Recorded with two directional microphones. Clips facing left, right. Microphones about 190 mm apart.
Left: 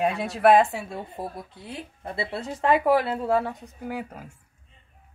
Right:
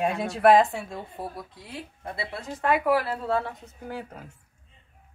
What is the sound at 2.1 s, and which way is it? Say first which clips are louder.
A woman's voice: left 4 dB; 30° left (ahead or behind).